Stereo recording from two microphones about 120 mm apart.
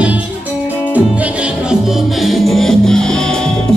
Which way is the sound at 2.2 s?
Centre (ahead or behind).